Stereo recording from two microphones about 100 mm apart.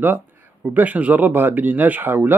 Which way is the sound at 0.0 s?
20° right (ahead or behind).